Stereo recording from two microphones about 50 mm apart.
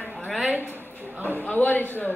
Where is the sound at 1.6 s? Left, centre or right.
Left.